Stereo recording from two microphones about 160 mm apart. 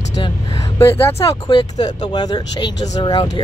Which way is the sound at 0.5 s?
15° left (ahead or behind).